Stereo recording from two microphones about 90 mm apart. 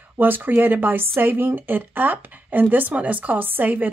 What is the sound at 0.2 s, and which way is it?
Speech, 20° right (ahead or behind).